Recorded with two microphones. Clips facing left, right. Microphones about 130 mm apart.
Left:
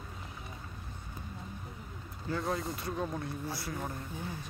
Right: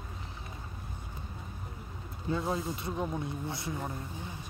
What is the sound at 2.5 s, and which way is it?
Speech, 25° right (ahead or behind).